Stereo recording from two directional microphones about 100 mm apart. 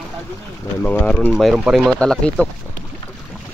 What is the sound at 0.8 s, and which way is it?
Speech, 15° left (ahead or behind).